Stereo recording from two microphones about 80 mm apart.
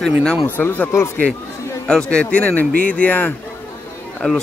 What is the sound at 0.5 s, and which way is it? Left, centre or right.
Speech, left.